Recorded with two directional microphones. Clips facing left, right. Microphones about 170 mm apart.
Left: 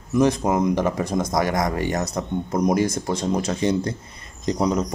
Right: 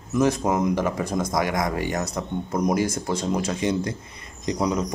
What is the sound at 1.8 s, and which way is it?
Speech, 30° left (ahead or behind).